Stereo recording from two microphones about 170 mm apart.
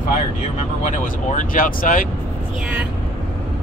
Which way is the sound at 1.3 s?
50° left (ahead or behind).